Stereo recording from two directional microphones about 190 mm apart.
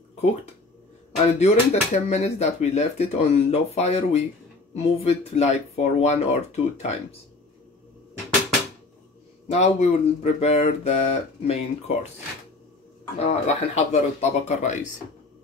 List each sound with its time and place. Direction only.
1.1 s speech: 35° left (ahead or behind)
9.5 s speech: 35° left (ahead or behind)
13.2 s speech: 35° left (ahead or behind)